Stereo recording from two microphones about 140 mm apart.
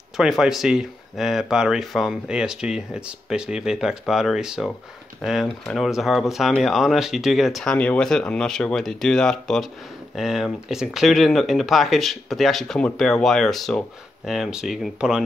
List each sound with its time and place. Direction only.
0.2 s speech: centre (ahead or behind)